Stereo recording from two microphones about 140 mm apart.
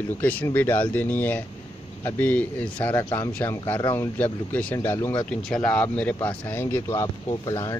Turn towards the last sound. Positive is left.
turn(degrees=20)  # may be behind; listen again after turning